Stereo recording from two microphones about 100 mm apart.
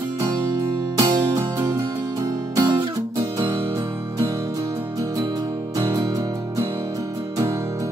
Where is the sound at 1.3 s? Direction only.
30° right (ahead or behind).